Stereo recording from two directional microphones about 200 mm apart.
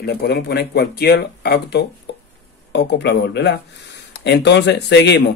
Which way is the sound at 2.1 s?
55° left (ahead or behind).